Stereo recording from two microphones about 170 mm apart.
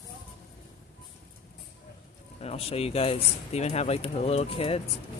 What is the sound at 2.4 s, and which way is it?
Speech, 35° left (ahead or behind).